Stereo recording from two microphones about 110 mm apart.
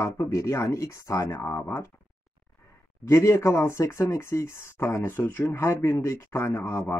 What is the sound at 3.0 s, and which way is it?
Speech, 25° left (ahead or behind).